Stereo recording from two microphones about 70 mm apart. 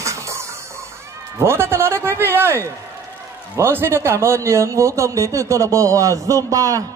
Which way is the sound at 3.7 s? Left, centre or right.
Right.